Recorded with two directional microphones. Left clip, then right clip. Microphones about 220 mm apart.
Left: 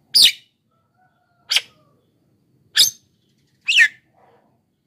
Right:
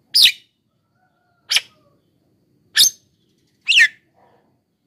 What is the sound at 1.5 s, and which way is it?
Dog, 10° right (ahead or behind).